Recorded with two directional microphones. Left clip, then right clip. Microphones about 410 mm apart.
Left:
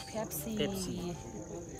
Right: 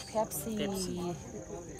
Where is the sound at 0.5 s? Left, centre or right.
Centre.